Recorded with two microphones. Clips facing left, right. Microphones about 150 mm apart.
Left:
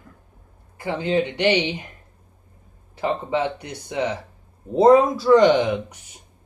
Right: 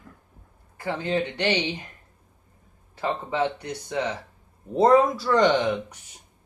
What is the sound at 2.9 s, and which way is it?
Speech, 15° left (ahead or behind).